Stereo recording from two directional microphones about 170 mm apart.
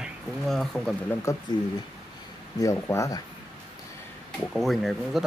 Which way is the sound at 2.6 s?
20° left (ahead or behind).